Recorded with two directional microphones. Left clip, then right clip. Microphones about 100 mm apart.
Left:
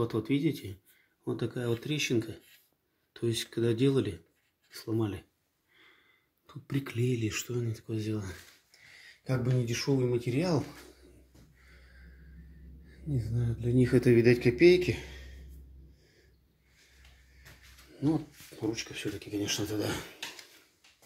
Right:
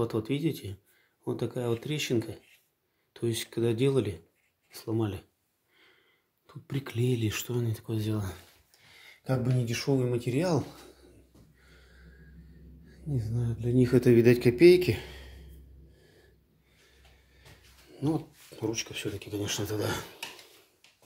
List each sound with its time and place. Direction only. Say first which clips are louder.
0.0 s speech: even; 15° right (ahead or behind)
6.7 s speech: left 1 dB; 15° right (ahead or behind)
7.0 s speech: right 3 dB; 45° right (ahead or behind)
9.2 s speech: right 2 dB; 35° right (ahead or behind)
13.1 s speech: right 1 dB; 10° right (ahead or behind); by 15.4 s 45° right (ahead or behind)
18.0 s speech: even; 20° right (ahead or behind)